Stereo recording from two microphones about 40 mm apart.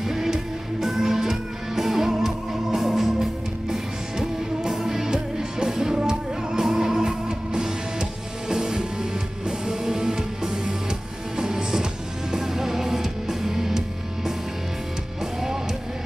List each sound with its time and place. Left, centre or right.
0.0 s music: centre